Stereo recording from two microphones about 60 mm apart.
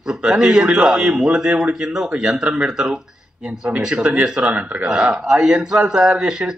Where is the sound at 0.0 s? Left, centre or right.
Centre.